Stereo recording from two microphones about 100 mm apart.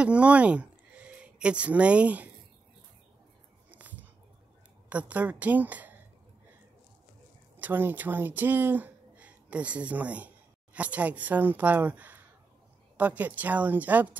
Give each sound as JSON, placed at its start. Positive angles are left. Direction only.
{"t": 0.0, "sound": "speech", "side_deg": -10}
{"t": 3.7, "sound": "a sound", "side_deg": -15}
{"t": 4.8, "sound": "a woman's voice", "side_deg": -15}
{"t": 7.5, "sound": "a woman's voice", "side_deg": -20}